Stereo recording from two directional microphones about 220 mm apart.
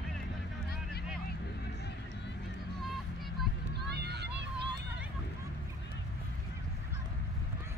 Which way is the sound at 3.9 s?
50° right (ahead or behind).